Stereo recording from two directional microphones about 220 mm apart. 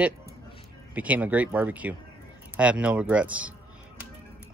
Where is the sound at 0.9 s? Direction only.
5° right (ahead or behind).